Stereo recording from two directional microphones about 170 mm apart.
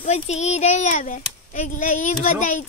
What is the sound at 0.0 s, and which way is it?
Speech, 40° left (ahead or behind).